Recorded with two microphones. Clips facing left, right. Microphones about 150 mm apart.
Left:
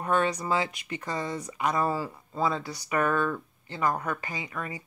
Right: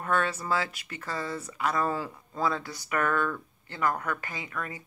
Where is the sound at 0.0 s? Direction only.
15° left (ahead or behind).